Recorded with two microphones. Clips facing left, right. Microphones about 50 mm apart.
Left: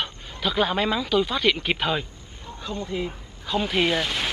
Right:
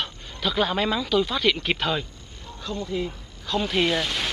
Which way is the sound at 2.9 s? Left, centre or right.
Centre.